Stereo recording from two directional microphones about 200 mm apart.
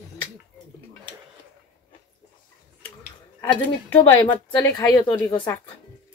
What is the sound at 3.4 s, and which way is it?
A woman's voice, 10° left (ahead or behind).